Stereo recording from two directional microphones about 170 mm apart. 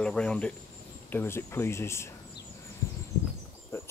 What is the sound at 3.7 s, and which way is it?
Insect, 15° left (ahead or behind).